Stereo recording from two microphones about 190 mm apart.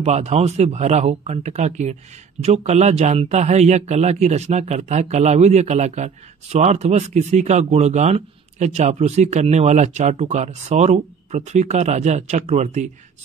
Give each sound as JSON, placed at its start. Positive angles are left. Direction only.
{"t": 0.0, "sound": "speech", "side_deg": -35}